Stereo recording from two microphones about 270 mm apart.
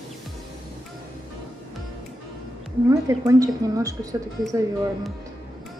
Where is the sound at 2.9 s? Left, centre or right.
Centre.